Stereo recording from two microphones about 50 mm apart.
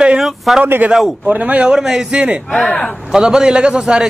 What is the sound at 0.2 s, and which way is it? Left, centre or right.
Speech, centre.